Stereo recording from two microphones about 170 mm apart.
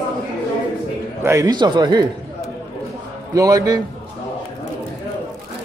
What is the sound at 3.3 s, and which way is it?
Speech, 20° right (ahead or behind).